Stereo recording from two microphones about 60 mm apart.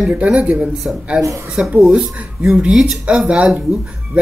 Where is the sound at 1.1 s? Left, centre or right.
Centre.